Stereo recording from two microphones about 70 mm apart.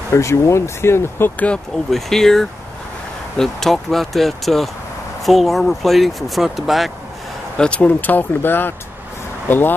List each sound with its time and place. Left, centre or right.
0.1 s speech: left
1.3 s speech: left
1.9 s speech: centre
7.5 s speech: centre; by 8.7 s left